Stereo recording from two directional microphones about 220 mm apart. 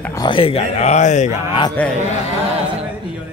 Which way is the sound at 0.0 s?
15° left (ahead or behind).